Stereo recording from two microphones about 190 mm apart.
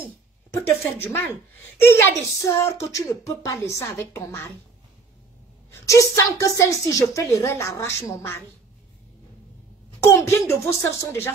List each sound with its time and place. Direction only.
0.0 s a woman's voice: 10° left (ahead or behind)
5.7 s a woman's voice: 15° left (ahead or behind)
9.9 s a woman's voice: 15° left (ahead or behind)